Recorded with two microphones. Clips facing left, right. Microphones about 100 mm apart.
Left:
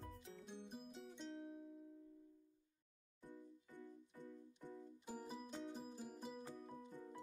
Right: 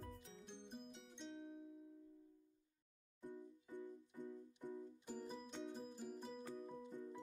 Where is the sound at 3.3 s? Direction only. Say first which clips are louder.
Right 5 dB; 15° right (ahead or behind).